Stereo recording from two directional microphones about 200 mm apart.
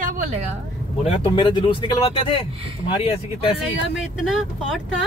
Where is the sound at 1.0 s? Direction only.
25° left (ahead or behind).